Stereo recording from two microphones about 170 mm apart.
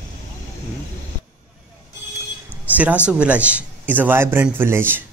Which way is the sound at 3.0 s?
5° right (ahead or behind).